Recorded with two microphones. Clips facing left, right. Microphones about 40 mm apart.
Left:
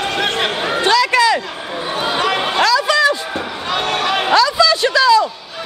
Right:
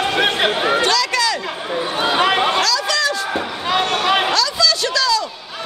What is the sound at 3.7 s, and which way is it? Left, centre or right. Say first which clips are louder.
Run: right 1 dB; centre.